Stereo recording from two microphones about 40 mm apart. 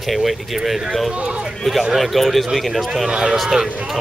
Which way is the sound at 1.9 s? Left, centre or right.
Centre.